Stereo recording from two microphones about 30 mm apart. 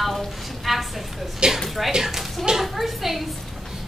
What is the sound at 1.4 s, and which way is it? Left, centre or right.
Speech, right.